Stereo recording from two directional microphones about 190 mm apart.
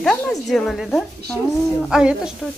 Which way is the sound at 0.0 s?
Centre (ahead or behind).